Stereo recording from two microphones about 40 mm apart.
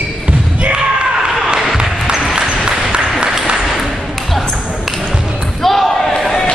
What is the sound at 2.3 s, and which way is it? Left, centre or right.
Applause, right.